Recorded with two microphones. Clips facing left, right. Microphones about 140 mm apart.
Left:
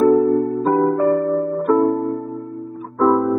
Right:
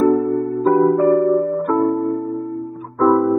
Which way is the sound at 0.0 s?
Centre (ahead or behind).